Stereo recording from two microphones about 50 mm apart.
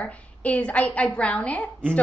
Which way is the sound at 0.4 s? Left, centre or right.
Left.